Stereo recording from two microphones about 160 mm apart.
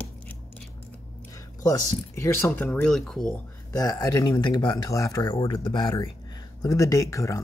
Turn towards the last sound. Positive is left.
turn(degrees=20)  # may be behind; listen again after turning